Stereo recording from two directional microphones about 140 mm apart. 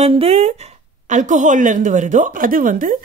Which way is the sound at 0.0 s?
50° right (ahead or behind).